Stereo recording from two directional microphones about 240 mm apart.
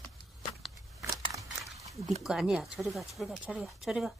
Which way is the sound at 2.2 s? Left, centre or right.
Centre.